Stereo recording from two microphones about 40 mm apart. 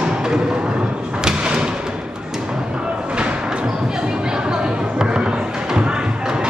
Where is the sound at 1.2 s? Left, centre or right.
Centre.